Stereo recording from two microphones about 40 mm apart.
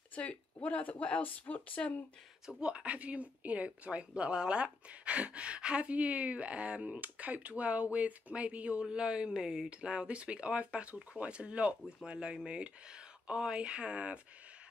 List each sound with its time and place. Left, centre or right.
0.1 s speech: left
2.6 s speech: right
8.8 s speech: right